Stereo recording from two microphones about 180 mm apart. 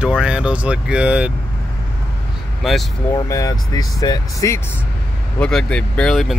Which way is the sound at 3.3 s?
20° left (ahead or behind).